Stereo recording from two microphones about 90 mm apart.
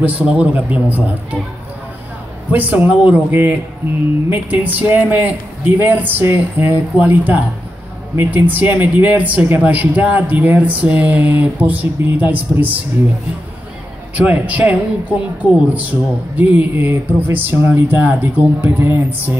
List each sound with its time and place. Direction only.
0.0 s a man's voice: 15° right (ahead or behind)
2.5 s a man's voice: 20° right (ahead or behind)
14.1 s a man's voice: 15° right (ahead or behind)